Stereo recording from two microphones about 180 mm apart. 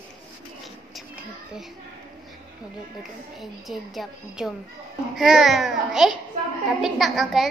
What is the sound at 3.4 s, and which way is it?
A woman's voice, centre (ahead or behind).